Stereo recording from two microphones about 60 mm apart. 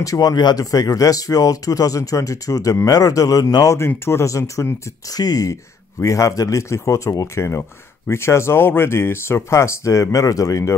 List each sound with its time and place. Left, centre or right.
0.0 s speech: left
3.7 s speech: left
4.3 s speech: left
5.1 s speech: left
5.9 s a man's voice: left
6.7 s speech: left